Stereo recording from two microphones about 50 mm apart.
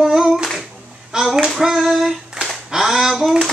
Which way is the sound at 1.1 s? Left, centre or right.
Centre.